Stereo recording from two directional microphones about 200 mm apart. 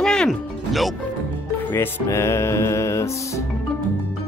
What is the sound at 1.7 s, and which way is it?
Music, 10° left (ahead or behind).